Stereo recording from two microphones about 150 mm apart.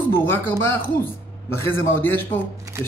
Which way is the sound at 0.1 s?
15° left (ahead or behind).